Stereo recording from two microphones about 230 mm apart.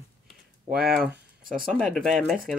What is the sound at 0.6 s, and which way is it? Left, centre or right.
Speech, right.